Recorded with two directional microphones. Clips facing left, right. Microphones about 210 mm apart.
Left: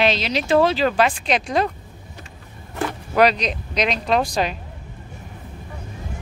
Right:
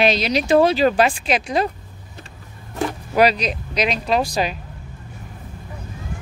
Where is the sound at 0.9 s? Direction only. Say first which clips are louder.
Right 2 dB; 35° right (ahead or behind).